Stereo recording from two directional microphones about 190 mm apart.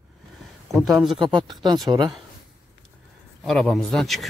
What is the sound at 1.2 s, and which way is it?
Speech, 25° right (ahead or behind).